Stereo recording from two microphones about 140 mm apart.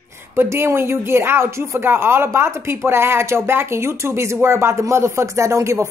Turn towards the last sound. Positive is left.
turn(degrees=-20)  # may be behind; listen again after turning